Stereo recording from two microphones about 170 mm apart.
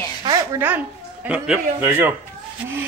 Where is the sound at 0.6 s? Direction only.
10° right (ahead or behind).